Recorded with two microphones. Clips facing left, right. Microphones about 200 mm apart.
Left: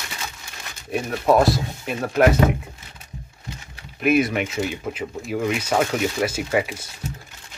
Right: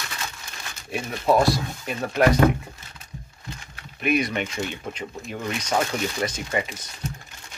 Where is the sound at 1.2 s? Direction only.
Centre (ahead or behind).